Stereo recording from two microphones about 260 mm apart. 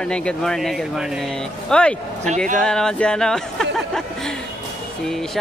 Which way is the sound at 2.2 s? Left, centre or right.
Right.